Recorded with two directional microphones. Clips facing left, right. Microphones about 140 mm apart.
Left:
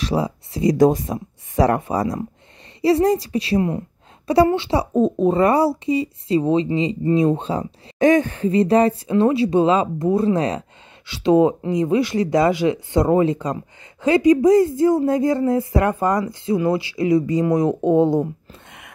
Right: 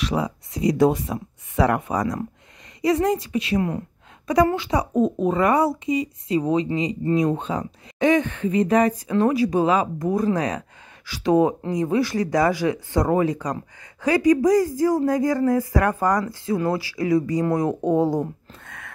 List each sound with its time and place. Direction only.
0.0 s speech: 30° left (ahead or behind)